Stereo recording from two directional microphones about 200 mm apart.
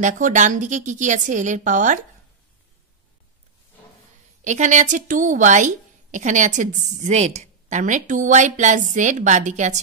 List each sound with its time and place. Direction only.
0.0 s a woman's voice: 40° right (ahead or behind)
4.5 s a woman's voice: 35° right (ahead or behind)